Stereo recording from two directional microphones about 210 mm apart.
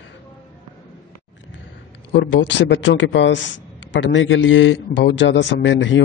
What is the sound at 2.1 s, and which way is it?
A man's voice, 60° left (ahead or behind).